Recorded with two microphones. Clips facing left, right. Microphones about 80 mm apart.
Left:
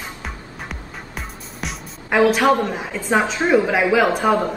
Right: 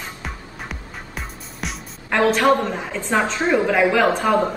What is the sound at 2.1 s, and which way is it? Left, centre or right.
A woman's voice, centre.